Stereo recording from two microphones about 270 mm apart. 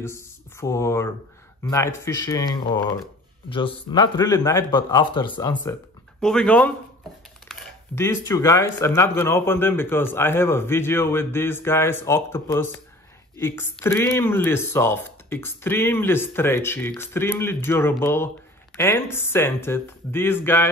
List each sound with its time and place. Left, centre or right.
0.0 s speech: centre
6.2 s speech: centre